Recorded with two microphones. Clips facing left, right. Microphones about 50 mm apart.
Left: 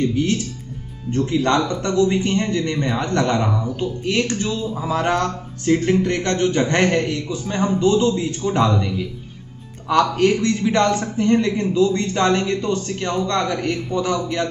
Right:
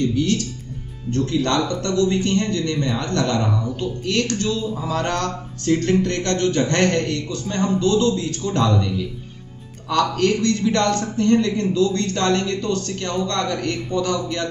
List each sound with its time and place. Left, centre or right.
0.0 s a man's voice: left